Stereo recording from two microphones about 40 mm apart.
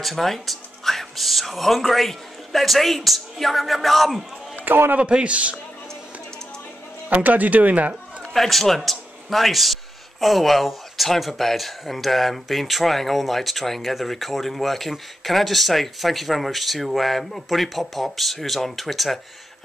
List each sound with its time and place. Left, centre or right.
0.0 s speech: centre
4.6 s a man's voice: right
4.9 s speech: right
7.1 s speech: right
8.3 s a man's voice: centre